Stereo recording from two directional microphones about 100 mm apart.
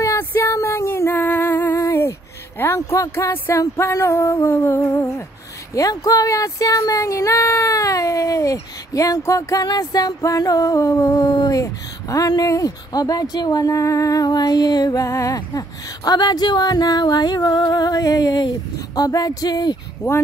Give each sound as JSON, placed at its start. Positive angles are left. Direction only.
{"t": 0.2, "sound": "female singing", "side_deg": 25}
{"t": 2.6, "sound": "music", "side_deg": 30}
{"t": 5.8, "sound": "speech", "side_deg": 35}
{"t": 20.0, "sound": "speech", "side_deg": 30}